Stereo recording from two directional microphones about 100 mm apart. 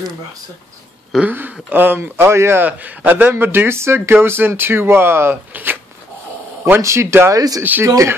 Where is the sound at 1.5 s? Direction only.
20° right (ahead or behind).